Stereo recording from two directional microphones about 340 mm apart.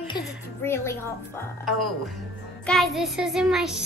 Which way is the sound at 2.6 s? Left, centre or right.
Centre.